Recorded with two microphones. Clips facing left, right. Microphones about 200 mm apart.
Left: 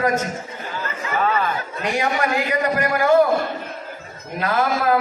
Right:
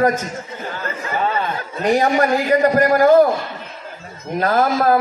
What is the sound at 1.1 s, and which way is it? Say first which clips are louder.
Chatter: even; 30° right (ahead or behind).